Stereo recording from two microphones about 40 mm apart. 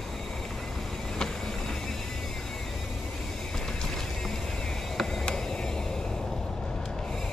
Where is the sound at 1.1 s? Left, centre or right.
Centre.